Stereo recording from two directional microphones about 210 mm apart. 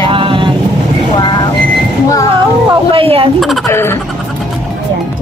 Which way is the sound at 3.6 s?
10° left (ahead or behind).